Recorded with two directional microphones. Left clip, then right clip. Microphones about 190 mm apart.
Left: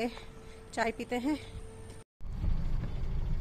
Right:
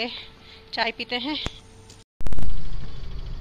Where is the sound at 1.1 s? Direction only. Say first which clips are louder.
Right 6 dB; 5° left (ahead or behind).